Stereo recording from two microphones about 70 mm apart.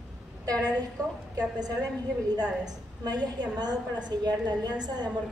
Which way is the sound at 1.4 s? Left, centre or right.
Right.